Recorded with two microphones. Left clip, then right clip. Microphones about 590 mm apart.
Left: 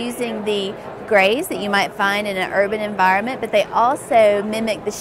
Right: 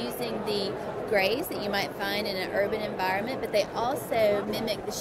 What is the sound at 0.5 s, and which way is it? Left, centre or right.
A woman's voice, left.